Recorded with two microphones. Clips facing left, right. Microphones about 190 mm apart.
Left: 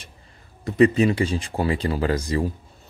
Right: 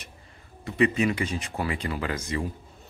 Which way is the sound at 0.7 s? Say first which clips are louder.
Left 6 dB; 40° left (ahead or behind).